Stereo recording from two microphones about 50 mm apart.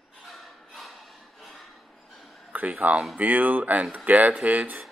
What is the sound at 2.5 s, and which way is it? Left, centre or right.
Speech, right.